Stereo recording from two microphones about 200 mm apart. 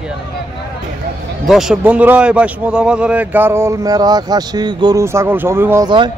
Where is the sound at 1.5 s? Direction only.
Centre (ahead or behind).